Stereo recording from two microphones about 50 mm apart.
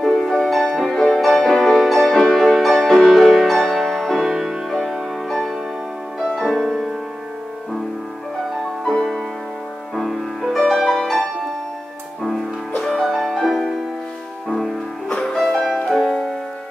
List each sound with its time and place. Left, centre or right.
0.0 s music: centre
4.3 s music: centre
6.5 s music: centre
9.9 s music: centre
12.8 s music: centre
15.1 s music: centre
15.9 s music: centre